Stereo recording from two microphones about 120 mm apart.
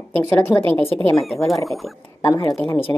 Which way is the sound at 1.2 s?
Centre (ahead or behind).